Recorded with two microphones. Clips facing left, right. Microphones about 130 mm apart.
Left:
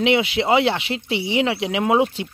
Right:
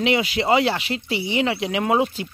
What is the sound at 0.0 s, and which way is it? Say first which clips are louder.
Speech: left 2 dB; 20° left (ahead or behind).